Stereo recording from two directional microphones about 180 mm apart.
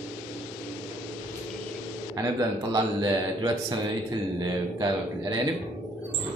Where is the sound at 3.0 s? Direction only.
20° right (ahead or behind).